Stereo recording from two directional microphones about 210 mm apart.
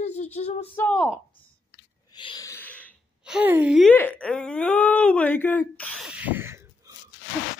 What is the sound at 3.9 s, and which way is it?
Speech, 10° left (ahead or behind).